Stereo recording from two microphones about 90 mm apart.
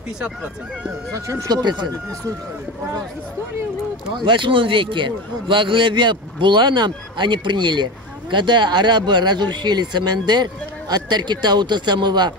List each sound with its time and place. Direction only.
0.2 s speech: 10° right (ahead or behind)
1.1 s speech: 35° right (ahead or behind)
1.6 s speech: 55° right (ahead or behind)
4.2 s a man's voice: 65° right (ahead or behind)